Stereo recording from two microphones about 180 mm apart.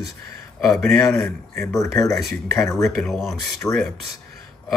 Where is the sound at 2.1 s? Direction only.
Centre (ahead or behind).